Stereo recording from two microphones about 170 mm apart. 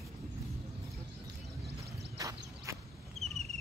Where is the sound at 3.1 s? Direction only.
Centre (ahead or behind).